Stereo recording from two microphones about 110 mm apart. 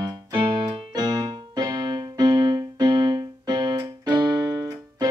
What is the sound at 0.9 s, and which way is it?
Keyboard, 35° right (ahead or behind).